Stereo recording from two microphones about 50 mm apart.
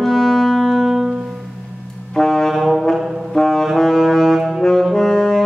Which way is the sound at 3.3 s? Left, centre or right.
Centre.